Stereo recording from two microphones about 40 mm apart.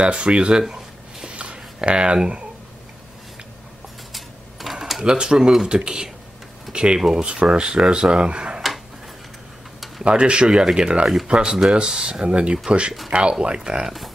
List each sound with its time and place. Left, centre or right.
0.0 s speech: right
1.2 s a sound: right
4.1 s a sound: centre
5.0 s speech: right
7.0 s speech: centre
7.2 s speech: right
10.0 s speech: right